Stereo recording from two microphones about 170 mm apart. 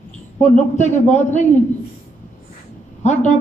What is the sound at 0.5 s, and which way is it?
Speech, 45° left (ahead or behind).